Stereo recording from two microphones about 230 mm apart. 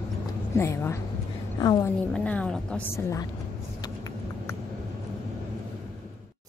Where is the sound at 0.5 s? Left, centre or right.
Centre.